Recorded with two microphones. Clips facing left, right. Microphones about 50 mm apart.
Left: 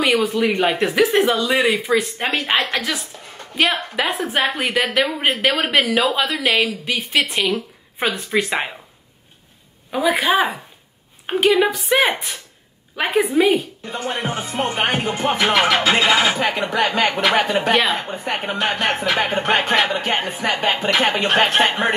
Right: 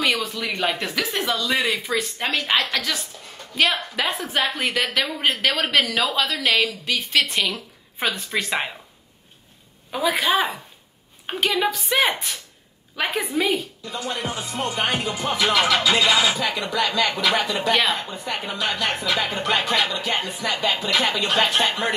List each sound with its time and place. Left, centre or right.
0.0 s a woman's voice: left
4.6 s a woman's voice: centre
9.8 s a woman's voice: centre; by 13.7 s left
13.8 s speech: left